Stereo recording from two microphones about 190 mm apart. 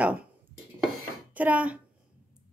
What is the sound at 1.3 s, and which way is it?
Speech, 5° right (ahead or behind).